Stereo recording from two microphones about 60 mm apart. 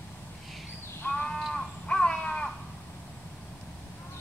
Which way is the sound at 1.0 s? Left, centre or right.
Centre.